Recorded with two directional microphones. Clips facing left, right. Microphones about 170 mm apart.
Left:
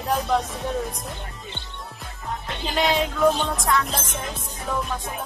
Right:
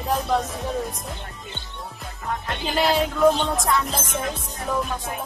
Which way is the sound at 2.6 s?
Centre (ahead or behind).